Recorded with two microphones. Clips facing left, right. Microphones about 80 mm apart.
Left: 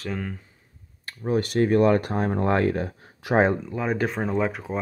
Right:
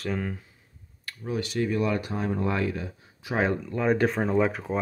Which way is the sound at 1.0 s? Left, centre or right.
Left.